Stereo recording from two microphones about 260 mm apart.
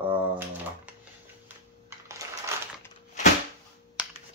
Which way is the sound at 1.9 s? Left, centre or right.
Centre.